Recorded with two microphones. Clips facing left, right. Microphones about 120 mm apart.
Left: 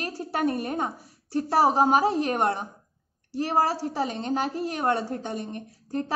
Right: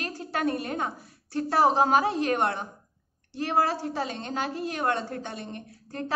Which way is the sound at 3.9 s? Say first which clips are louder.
Left 4 dB; 15° left (ahead or behind).